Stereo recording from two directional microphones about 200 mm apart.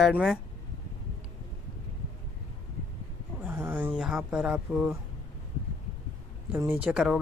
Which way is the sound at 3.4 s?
10° right (ahead or behind).